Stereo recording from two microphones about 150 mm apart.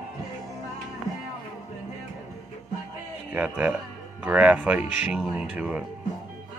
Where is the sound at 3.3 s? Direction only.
10° right (ahead or behind).